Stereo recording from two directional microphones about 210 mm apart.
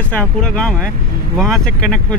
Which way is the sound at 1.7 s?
45° left (ahead or behind).